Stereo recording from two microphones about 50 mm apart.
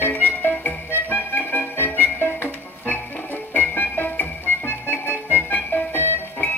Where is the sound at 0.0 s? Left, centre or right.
Left.